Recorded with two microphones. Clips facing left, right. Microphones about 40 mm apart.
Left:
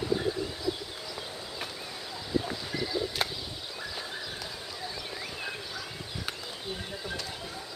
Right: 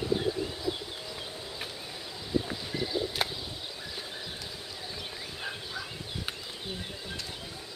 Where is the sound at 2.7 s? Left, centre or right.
Centre.